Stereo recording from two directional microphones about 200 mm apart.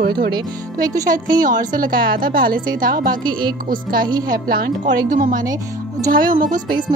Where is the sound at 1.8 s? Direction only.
45° right (ahead or behind).